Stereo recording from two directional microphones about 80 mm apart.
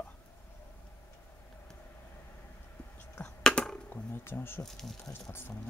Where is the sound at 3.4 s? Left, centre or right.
Centre.